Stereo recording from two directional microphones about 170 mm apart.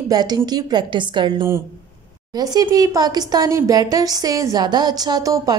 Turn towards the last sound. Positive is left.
turn(degrees=-20)  # may be behind; listen again after turning